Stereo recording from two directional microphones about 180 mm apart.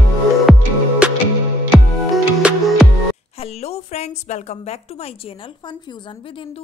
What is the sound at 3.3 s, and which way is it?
A woman's voice, 35° left (ahead or behind).